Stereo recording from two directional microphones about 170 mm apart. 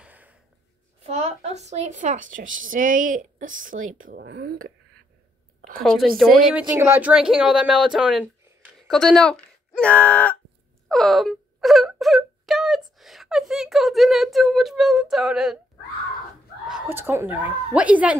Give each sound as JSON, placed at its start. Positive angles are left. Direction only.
{"t": 0.0, "sound": "a sound", "side_deg": -10}
{"t": 1.0, "sound": "a woman's voice", "side_deg": -40}
{"t": 4.2, "sound": "speech", "side_deg": -75}
{"t": 5.9, "sound": "speech", "side_deg": 0}
{"t": 6.8, "sound": "speech", "side_deg": -10}
{"t": 16.8, "sound": "a woman's voice", "side_deg": -15}